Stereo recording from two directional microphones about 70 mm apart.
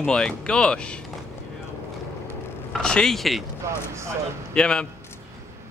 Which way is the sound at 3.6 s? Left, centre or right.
Right.